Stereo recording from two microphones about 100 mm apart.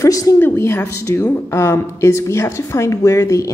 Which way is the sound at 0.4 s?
25° left (ahead or behind).